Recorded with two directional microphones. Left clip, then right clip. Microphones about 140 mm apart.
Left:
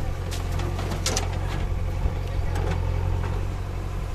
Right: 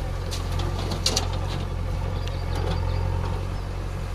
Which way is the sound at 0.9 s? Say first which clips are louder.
Right 3 dB; 25° left (ahead or behind).